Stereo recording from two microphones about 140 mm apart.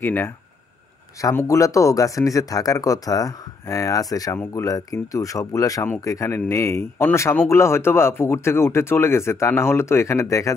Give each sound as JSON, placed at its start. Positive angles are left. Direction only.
{"t": 0.0, "sound": "speech", "side_deg": 15}